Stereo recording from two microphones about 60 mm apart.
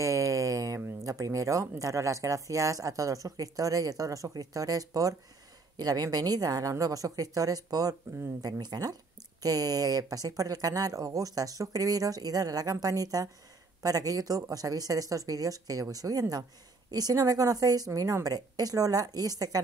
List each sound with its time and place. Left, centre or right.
0.0 s a sound: right
1.0 s speech: right
16.9 s speech: right